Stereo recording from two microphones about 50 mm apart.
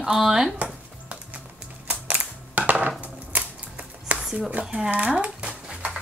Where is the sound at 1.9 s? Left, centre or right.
Right.